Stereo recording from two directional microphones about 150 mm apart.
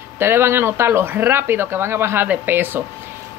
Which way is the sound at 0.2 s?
15° right (ahead or behind).